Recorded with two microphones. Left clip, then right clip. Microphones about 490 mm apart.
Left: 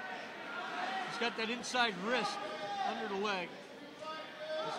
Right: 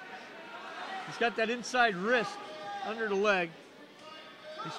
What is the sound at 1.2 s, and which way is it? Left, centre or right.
Speech, right.